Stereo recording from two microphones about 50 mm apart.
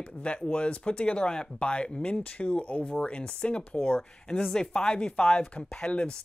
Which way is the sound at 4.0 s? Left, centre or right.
Centre.